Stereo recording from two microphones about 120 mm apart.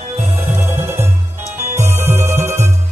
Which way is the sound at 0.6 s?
20° right (ahead or behind).